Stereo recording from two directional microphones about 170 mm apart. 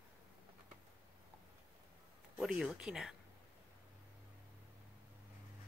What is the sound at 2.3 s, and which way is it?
Speech, centre (ahead or behind).